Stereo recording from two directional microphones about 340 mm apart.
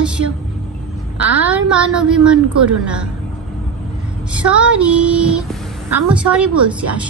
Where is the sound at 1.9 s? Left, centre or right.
Centre.